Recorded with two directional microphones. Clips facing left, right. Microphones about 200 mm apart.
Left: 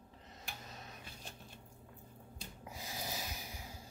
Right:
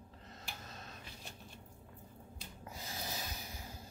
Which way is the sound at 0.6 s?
15° left (ahead or behind).